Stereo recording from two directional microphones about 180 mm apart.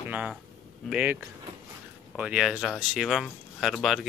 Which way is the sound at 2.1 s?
5° right (ahead or behind).